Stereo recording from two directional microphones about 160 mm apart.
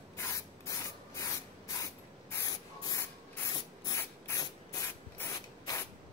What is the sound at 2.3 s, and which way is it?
Spray, 20° left (ahead or behind).